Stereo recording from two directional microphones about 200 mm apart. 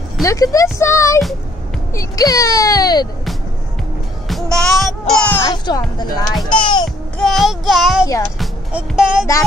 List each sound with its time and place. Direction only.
0.2 s speech: 15° left (ahead or behind)
4.3 s speech: centre (ahead or behind)
5.9 s a child's voice: 20° left (ahead or behind)
7.2 s child singing: centre (ahead or behind)
8.4 s speech: 5° right (ahead or behind)